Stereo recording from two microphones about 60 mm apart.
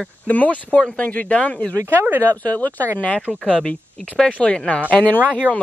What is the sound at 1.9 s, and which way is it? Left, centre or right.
Speech, right.